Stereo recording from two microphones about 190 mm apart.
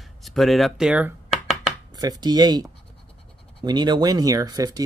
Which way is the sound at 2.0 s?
20° right (ahead or behind).